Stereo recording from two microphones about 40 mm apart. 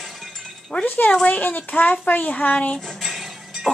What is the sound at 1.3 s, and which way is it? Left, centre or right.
Speech, left.